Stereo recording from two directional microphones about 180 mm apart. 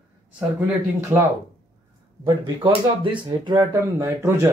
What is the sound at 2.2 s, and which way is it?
Speech, 30° right (ahead or behind).